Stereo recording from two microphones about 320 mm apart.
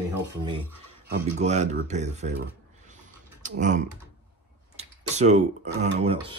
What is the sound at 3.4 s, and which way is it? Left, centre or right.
Speech, right.